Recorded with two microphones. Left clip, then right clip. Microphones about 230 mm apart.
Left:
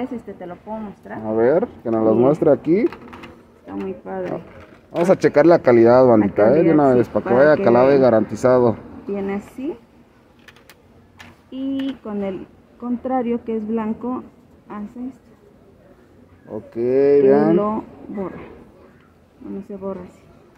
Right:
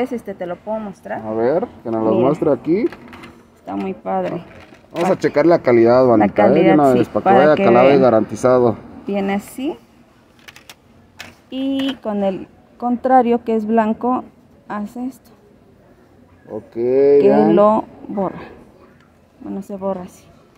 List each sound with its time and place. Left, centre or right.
0.0 s speech: right
1.2 s speech: centre
3.6 s speech: right
4.9 s speech: centre
9.1 s speech: right
11.5 s speech: right
16.4 s speech: centre
17.6 s speech: right
19.7 s speech: right